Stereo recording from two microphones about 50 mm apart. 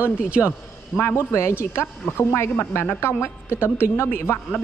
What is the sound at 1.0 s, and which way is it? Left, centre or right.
Speech, left.